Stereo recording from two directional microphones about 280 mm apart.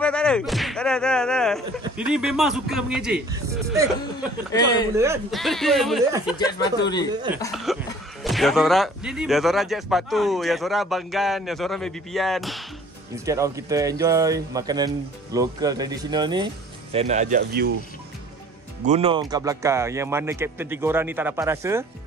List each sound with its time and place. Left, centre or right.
0.0 s speech: centre
4.5 s speech: centre
4.9 s speech: centre
6.3 s speech: centre
7.5 s speech: centre
13.1 s a man's voice: centre; by 17.7 s right
18.9 s a man's voice: centre